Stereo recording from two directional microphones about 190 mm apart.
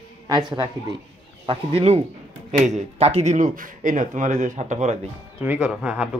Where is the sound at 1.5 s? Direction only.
35° right (ahead or behind).